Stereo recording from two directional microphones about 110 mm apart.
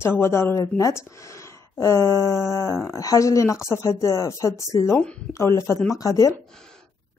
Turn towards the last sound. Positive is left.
turn(degrees=30)  # may be behind; listen again after turning